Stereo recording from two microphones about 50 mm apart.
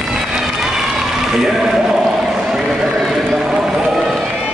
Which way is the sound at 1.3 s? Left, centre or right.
Centre.